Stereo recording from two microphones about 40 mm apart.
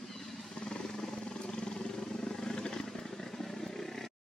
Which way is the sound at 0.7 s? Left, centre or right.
Centre.